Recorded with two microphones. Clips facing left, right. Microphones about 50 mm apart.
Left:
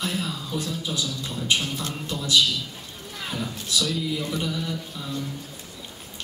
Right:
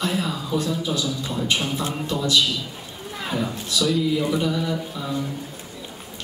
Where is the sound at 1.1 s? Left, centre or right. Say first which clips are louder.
Right 2 dB; centre.